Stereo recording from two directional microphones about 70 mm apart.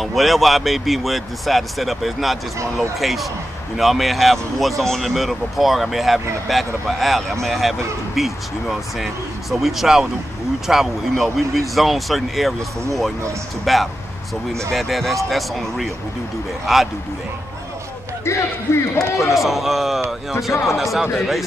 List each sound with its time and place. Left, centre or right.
0.0 s speech: centre
18.9 s a man's voice: left
19.3 s speech: centre